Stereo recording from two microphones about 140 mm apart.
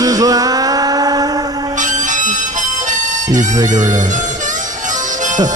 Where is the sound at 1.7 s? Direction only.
65° right (ahead or behind).